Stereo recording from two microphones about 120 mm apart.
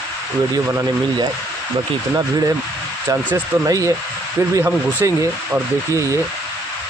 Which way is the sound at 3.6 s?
25° right (ahead or behind).